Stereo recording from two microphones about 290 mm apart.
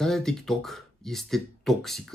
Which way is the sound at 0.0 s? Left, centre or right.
Centre.